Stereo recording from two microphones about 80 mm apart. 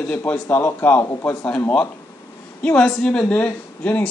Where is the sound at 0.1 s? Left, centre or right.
Left.